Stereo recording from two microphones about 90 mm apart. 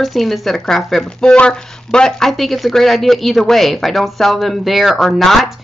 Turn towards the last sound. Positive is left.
turn(degrees=5)  # may be behind; listen again after turning